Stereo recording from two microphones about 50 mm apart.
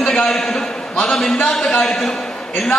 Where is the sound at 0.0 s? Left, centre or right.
Centre.